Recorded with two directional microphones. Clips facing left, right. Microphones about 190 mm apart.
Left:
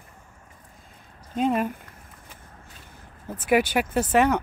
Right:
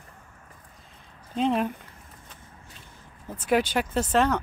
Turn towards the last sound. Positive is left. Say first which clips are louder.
# left 3 dB
turn(degrees=10)  # may be behind; listen again after turning